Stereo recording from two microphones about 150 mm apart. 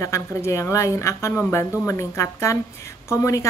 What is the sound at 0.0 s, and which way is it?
A woman's voice, 20° left (ahead or behind).